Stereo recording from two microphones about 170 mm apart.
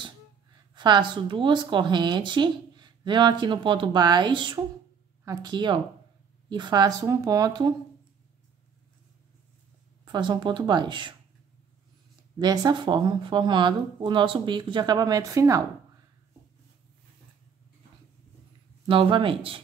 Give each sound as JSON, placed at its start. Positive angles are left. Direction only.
{"t": 0.7, "sound": "speech", "side_deg": -25}
{"t": 10.0, "sound": "speech", "side_deg": -25}
{"t": 12.4, "sound": "speech", "side_deg": -25}
{"t": 18.9, "sound": "speech", "side_deg": -30}